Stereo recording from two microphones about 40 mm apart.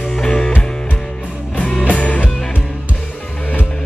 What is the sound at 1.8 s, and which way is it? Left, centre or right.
Music, left.